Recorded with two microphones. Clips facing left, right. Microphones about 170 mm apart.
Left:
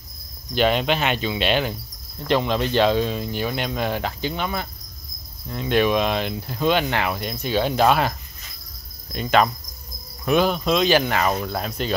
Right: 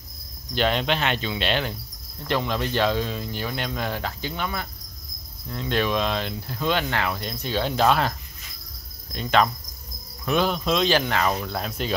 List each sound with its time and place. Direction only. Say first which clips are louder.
0.6 s speech: left 3 dB; 10° left (ahead or behind)
9.1 s speech: left 2 dB; 5° left (ahead or behind)